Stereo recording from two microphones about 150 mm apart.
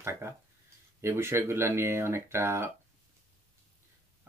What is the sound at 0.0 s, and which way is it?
Speech, 20° right (ahead or behind).